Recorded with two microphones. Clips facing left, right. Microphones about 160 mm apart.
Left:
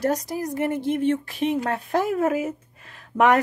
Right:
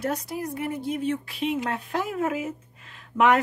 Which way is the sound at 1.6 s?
40° left (ahead or behind).